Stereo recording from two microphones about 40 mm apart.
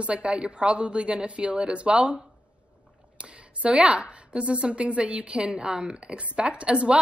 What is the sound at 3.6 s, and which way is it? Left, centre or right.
A woman's voice, right.